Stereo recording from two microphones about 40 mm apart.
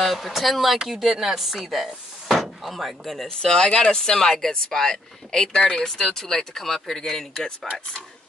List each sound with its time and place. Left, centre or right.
0.0 s speech: centre
3.3 s speech: centre
5.5 s speech: left
5.9 s speech: centre